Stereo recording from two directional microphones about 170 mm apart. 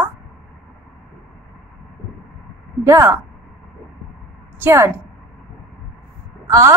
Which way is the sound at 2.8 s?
15° right (ahead or behind).